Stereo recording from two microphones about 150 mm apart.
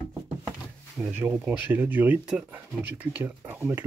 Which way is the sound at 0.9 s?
5° right (ahead or behind).